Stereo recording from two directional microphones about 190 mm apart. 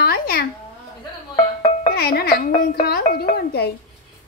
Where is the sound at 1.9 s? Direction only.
55° left (ahead or behind).